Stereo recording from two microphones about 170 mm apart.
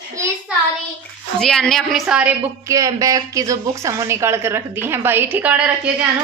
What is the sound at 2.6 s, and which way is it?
A woman's voice, 20° right (ahead or behind).